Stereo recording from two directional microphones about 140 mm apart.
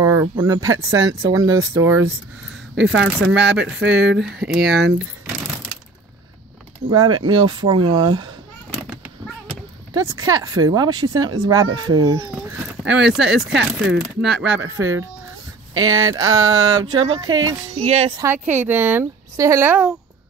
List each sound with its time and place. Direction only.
0.0 s speech: 20° right (ahead or behind)
2.8 s speech: 5° right (ahead or behind)
6.9 s speech: 30° right (ahead or behind)
8.7 s cat: 5° right (ahead or behind)
9.9 s speech: 25° right (ahead or behind)
12.3 s speech: 5° right (ahead or behind); by 17.6 s 30° right (ahead or behind)
17.7 s speech: 45° right (ahead or behind)
18.1 s speech: 20° right (ahead or behind)